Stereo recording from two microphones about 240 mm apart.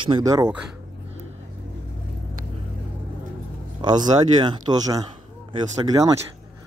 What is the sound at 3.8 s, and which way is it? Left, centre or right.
Speech, centre.